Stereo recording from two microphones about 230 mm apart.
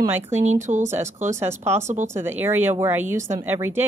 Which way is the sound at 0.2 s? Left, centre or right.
Right.